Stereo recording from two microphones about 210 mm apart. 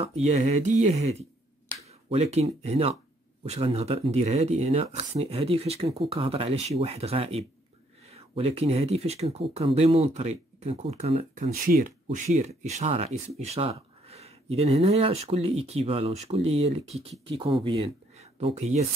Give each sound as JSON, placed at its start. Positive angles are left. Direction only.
{"t": 0.0, "sound": "speech", "side_deg": -30}